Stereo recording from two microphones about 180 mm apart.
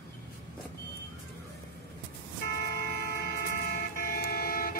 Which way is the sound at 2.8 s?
55° left (ahead or behind).